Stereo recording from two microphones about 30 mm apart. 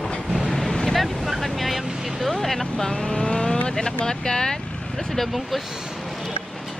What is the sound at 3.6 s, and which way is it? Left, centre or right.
Vehicle, left.